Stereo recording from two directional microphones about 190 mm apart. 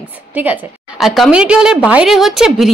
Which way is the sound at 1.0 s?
Centre (ahead or behind).